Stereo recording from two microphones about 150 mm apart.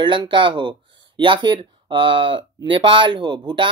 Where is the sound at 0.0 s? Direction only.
30° right (ahead or behind).